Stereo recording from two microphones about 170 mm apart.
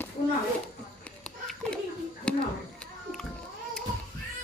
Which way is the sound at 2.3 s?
5° left (ahead or behind).